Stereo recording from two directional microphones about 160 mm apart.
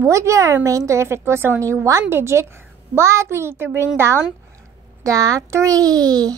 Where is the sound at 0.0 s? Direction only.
20° right (ahead or behind).